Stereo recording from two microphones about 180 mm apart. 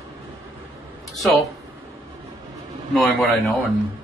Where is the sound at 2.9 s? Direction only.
Centre (ahead or behind).